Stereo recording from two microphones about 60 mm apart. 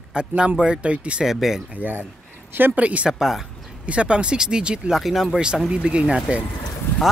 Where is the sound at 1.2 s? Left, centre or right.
Centre.